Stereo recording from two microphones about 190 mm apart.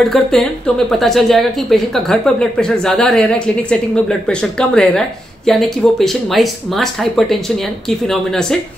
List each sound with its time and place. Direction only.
0.0 s speech: centre (ahead or behind)